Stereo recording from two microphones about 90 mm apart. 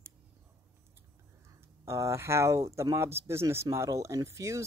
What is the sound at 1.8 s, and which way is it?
Speech, 35° right (ahead or behind).